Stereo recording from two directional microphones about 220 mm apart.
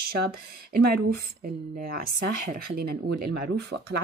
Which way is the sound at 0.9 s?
40° right (ahead or behind).